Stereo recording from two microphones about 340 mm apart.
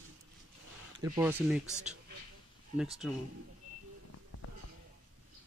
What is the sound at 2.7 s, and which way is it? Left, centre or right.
Speech, centre.